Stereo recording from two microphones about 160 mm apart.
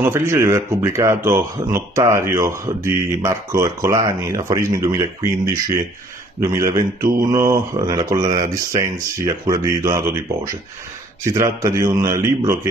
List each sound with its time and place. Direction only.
0.0 s speech: 15° right (ahead or behind)
6.4 s speech: 20° right (ahead or behind)